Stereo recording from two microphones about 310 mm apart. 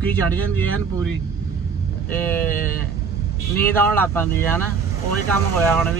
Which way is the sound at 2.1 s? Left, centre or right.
Centre.